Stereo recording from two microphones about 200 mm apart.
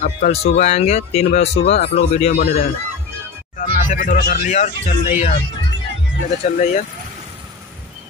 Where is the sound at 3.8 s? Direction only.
40° left (ahead or behind).